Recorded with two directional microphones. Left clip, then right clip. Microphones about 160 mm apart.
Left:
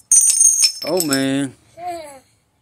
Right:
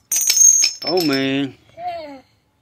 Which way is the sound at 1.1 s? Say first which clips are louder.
Even; 40° left (ahead or behind).